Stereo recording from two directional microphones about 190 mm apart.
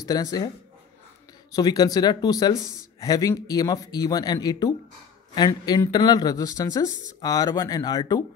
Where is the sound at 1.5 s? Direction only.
20° left (ahead or behind).